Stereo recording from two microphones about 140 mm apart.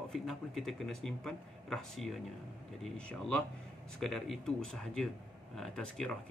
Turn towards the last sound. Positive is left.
turn(degrees=5)  # may be behind; listen again after turning